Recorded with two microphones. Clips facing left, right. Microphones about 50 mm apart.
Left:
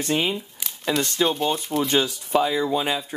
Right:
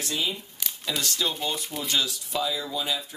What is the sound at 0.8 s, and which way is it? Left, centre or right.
Speech, left.